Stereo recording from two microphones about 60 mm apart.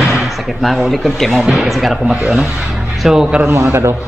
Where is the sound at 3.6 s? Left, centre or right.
Right.